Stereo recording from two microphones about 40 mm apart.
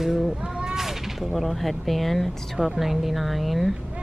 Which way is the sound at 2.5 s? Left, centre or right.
Centre.